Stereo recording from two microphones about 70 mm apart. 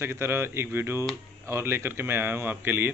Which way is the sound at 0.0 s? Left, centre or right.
Right.